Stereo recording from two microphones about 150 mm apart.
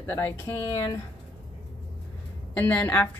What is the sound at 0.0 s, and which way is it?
Speech, 20° left (ahead or behind).